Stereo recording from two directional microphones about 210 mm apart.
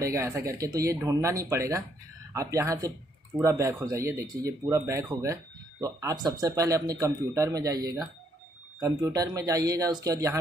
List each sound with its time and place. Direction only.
0.0 s speech: 15° right (ahead or behind)